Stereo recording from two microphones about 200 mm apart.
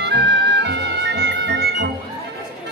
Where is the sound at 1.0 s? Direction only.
60° right (ahead or behind).